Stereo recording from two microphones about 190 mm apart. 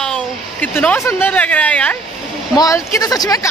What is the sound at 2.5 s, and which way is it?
Speech, 15° left (ahead or behind).